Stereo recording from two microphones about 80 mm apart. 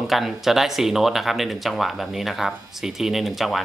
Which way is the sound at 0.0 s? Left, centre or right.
Centre.